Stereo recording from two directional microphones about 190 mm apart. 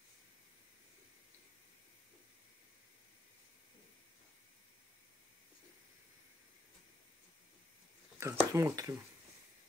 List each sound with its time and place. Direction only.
8.2 s speech: 15° right (ahead or behind)